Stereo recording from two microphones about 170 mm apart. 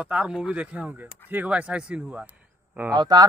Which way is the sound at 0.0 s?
5° right (ahead or behind).